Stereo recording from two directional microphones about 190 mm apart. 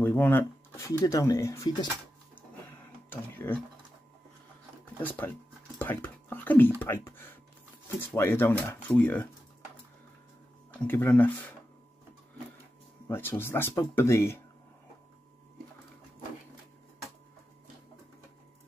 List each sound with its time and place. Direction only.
0.0 s speech: 10° left (ahead or behind)
3.1 s speech: 10° left (ahead or behind)
5.0 s speech: 10° left (ahead or behind)
10.9 s speech: 10° left (ahead or behind)
13.1 s speech: 10° left (ahead or behind)